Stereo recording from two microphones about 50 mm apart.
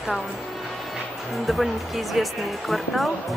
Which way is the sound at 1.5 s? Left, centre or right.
Centre.